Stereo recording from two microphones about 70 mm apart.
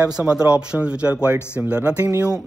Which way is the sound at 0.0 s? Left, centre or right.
Centre.